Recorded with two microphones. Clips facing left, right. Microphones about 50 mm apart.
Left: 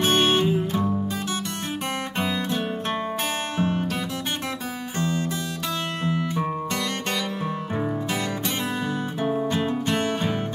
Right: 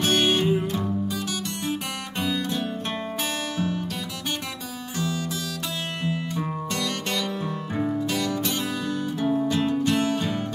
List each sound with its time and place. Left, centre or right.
0.0 s music: left
1.7 s guitar: left
4.9 s music: left